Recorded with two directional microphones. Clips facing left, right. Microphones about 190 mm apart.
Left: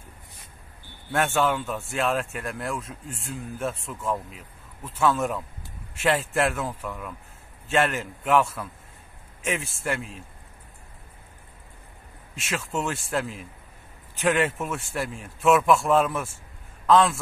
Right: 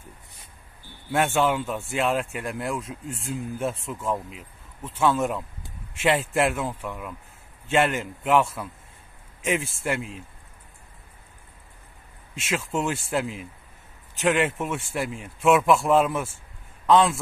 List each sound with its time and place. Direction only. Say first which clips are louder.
1.1 s a man's voice: right 1 dB; 5° right (ahead or behind)
12.4 s a man's voice: right 2 dB; centre (ahead or behind)